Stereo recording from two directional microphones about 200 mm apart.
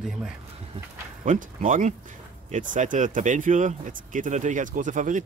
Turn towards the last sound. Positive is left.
turn(degrees=-40)  # may be behind; listen again after turning